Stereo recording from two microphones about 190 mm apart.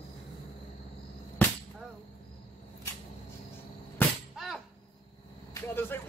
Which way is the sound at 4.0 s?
10° left (ahead or behind).